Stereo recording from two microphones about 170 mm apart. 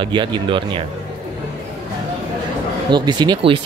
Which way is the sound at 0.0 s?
30° right (ahead or behind).